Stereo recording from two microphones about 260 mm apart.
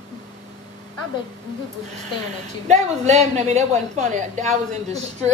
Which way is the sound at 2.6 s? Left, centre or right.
Right.